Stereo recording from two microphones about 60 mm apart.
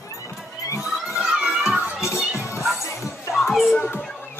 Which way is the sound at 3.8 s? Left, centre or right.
Left.